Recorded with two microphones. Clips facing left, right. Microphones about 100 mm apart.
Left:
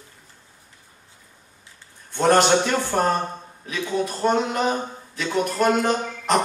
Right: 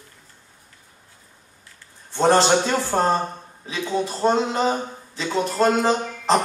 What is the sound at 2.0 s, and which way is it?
A man's voice, 30° right (ahead or behind).